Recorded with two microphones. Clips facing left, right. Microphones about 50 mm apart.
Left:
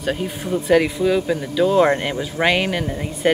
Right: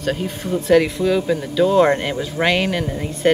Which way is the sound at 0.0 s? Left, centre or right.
Centre.